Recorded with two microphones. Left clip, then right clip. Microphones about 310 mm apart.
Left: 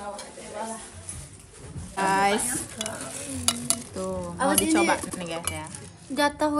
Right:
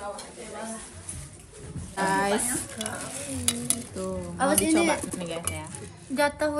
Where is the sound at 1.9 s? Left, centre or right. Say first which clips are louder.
Left 2 dB; centre.